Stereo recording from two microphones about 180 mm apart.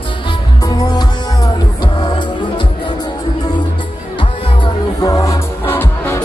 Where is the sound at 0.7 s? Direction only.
20° left (ahead or behind).